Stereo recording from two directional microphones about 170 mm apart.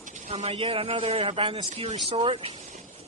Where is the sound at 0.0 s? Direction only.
35° right (ahead or behind).